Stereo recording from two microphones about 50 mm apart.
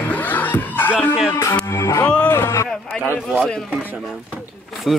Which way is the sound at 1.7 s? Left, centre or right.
Left.